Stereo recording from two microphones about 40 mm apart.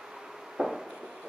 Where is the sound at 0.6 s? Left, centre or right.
Centre.